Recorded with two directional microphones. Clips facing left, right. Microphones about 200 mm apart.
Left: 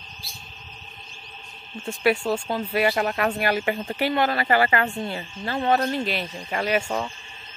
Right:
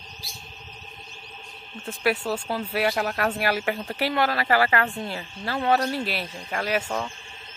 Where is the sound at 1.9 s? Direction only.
Centre (ahead or behind).